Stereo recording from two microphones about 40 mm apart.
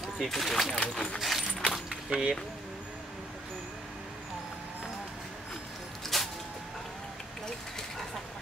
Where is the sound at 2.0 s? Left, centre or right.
Centre.